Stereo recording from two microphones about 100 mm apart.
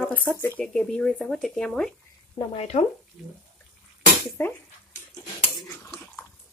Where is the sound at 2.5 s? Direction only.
90° left.